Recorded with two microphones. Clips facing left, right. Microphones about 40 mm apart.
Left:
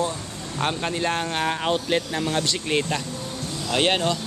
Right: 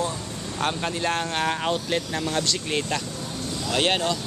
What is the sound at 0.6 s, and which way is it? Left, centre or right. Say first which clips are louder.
Speech: left 1 dB; centre.